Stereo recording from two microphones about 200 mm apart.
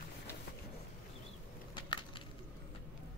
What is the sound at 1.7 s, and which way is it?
Crushing, 25° left (ahead or behind).